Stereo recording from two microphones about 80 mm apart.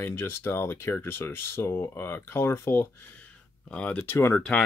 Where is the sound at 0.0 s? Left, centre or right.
Left.